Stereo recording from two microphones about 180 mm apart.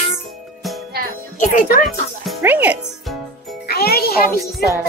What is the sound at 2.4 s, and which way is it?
Speech, 10° right (ahead or behind).